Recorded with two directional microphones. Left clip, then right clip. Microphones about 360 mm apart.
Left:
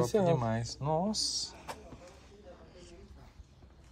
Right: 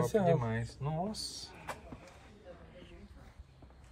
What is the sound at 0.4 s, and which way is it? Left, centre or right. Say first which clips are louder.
Speech: left 4 dB; centre.